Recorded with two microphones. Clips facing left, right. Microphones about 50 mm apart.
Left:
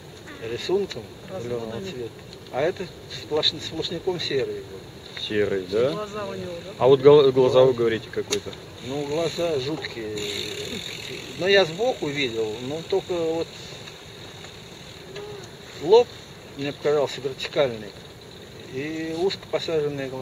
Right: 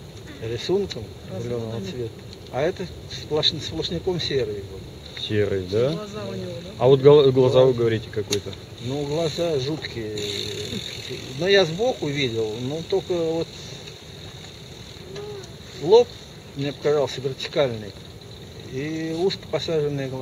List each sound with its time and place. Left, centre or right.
0.6 s speech: centre
0.8 s speech: centre
2.5 s speech: centre
5.9 s speech: left
8.8 s speech: left
10.1 s speech: centre
15.8 s speech: centre